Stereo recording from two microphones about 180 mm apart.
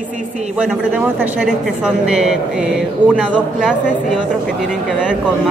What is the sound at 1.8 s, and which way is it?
Speech, 5° right (ahead or behind).